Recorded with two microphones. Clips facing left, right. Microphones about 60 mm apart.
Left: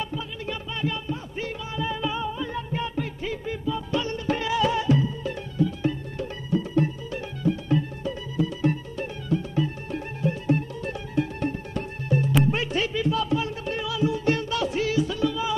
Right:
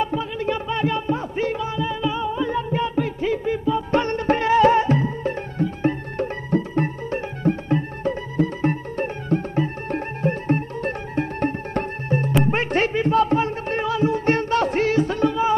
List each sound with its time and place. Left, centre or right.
0.0 s music: right
4.0 s music: right